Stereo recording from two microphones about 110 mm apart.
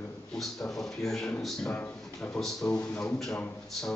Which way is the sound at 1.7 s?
15° left (ahead or behind).